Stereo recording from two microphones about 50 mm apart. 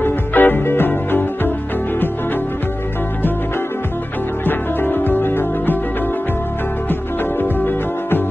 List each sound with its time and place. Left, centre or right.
0.0 s music: left
4.5 s music: left
6.9 s music: left